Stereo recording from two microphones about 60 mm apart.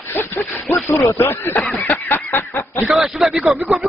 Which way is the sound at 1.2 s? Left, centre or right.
Left.